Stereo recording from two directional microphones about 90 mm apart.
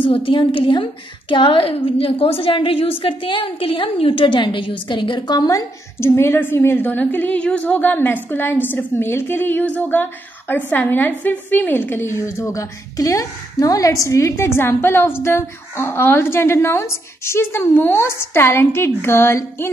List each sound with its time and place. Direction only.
0.0 s a woman's voice: 75° left (ahead or behind); by 5.7 s 45° left (ahead or behind)
5.9 s a woman's voice: 30° left (ahead or behind)